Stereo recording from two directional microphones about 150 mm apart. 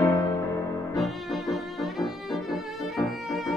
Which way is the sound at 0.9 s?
Centre (ahead or behind).